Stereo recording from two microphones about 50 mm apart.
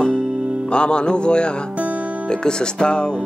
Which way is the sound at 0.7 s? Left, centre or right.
Centre.